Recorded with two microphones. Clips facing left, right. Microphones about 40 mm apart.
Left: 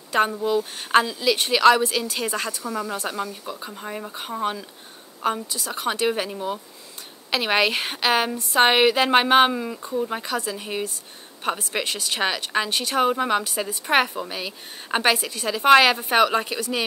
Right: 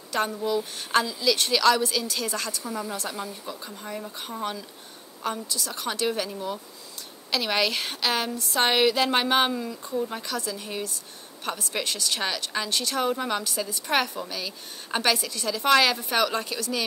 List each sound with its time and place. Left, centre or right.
0.3 s speech: centre
0.7 s speech: left